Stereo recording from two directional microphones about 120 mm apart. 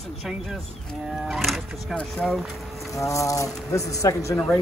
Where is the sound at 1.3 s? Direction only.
Centre (ahead or behind).